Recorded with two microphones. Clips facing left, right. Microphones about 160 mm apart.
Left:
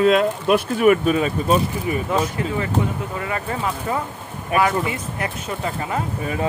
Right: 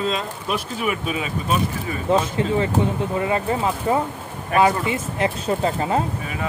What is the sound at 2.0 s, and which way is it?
Speech, 25° right (ahead or behind).